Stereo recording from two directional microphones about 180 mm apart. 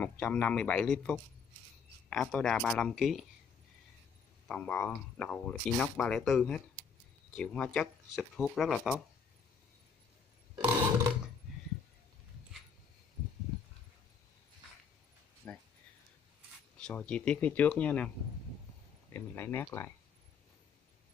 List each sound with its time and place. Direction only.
0.0 s speech: 10° left (ahead or behind)
4.5 s speech: 5° left (ahead or behind)
10.6 s a sound: 10° right (ahead or behind)
15.4 s a sound: 10° left (ahead or behind)
16.7 s speech: 5° left (ahead or behind)
19.1 s speech: 10° left (ahead or behind)